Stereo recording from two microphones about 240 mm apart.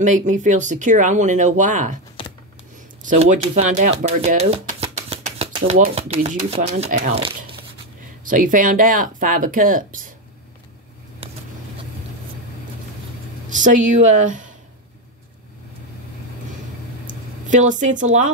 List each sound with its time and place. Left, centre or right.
0.0 s speech: right
2.2 s computer keyboard: left
3.0 s speech: right
8.2 s speech: right
13.6 s speech: right
17.1 s a sound: right